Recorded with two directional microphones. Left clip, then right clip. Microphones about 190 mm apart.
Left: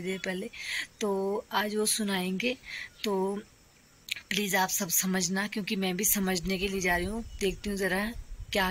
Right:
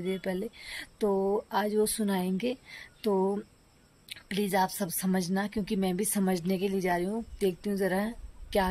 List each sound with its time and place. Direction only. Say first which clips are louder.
0.0 s speech: right 1 dB; 20° right (ahead or behind)
1.0 s speech: right 4 dB; centre (ahead or behind)
1.5 s a woman's voice: right 1 dB; 20° right (ahead or behind)